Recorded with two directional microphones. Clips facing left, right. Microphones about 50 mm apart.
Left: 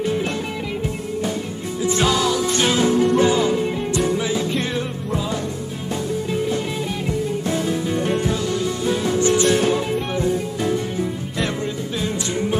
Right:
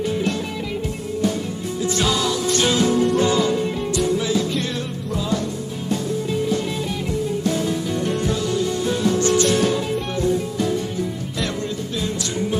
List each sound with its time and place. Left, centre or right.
1.9 s music: centre
7.9 s music: left